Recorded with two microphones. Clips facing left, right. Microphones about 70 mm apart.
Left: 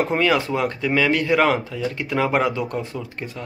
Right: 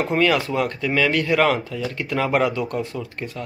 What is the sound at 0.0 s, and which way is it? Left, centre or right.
Speech, left.